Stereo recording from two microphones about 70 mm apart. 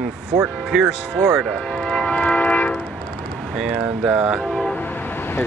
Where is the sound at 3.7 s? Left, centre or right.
Centre.